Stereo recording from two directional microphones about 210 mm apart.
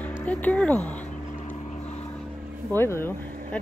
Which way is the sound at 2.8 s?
10° left (ahead or behind).